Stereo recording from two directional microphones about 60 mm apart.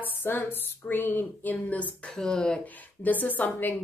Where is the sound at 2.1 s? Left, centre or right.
Centre.